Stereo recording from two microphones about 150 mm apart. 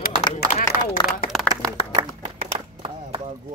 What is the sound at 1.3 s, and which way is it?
Clapping, centre (ahead or behind).